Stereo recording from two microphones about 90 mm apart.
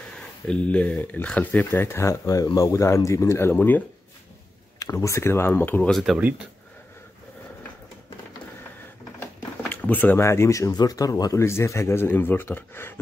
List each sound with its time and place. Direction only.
0.5 s speech: 15° left (ahead or behind)
4.7 s speech: 35° left (ahead or behind)
5.9 s speech: centre (ahead or behind)
6.1 s speech: 15° right (ahead or behind)
9.7 s drawer open or close: 20° left (ahead or behind)
10.2 s speech: 30° left (ahead or behind)
10.7 s speech: 45° left (ahead or behind)
11.4 s speech: 30° left (ahead or behind)